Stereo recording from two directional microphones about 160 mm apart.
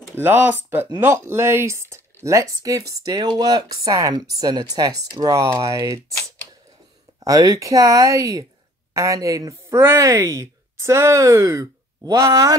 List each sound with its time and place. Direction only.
0.1 s speech: 15° right (ahead or behind)
7.2 s speech: 20° right (ahead or behind)